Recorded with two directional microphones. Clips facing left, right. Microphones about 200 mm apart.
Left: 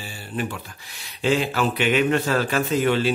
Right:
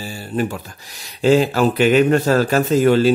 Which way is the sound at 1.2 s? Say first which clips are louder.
Right 7 dB; 40° right (ahead or behind).